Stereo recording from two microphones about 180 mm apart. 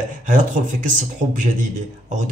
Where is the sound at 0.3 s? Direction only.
45° right (ahead or behind).